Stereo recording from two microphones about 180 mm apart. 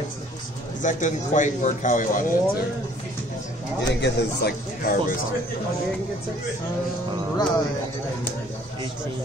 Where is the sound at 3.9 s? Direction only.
65° left (ahead or behind).